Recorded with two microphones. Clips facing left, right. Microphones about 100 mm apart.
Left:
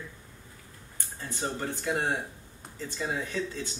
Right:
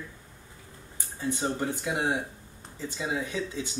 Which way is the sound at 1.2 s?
10° right (ahead or behind).